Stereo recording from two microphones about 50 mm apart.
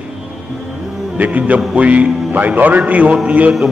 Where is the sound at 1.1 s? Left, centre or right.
Right.